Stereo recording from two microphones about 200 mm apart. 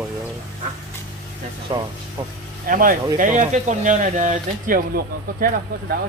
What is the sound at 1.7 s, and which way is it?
Speech, 25° right (ahead or behind).